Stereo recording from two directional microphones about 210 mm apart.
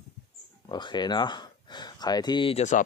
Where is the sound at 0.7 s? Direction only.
20° left (ahead or behind).